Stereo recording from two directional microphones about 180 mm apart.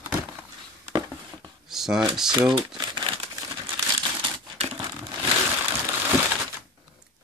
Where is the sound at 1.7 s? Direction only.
Centre (ahead or behind).